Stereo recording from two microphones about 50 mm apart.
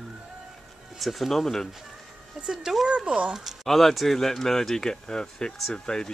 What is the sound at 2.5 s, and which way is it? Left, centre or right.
Speech, centre.